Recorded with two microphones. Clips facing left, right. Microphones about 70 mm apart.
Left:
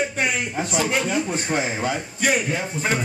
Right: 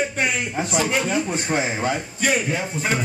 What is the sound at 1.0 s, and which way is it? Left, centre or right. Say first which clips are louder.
Speech: right 1 dB; centre.